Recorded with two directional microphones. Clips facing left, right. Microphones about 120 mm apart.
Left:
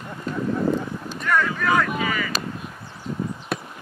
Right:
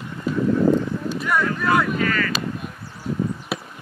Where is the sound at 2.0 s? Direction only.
10° left (ahead or behind).